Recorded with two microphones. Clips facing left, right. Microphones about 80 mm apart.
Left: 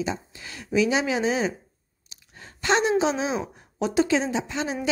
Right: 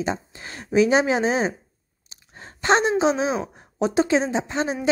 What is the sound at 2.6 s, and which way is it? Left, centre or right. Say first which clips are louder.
A woman's voice: right 3 dB; right.